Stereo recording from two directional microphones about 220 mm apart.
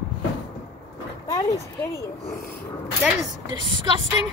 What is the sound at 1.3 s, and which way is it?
Speech, 15° left (ahead or behind).